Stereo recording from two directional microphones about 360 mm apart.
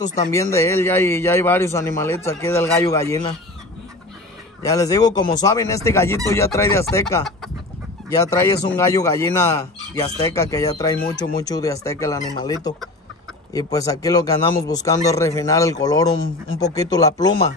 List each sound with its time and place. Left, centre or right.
0.0 s speech: centre
0.3 s speech: centre
4.6 s speech: centre